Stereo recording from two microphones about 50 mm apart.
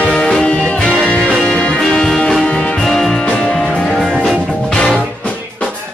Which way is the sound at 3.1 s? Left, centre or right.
Left.